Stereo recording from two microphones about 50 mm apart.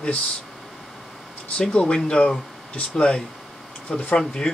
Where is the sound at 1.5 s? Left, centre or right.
Left.